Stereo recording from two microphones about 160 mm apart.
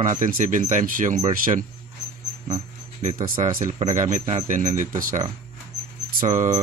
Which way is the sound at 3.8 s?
45° right (ahead or behind).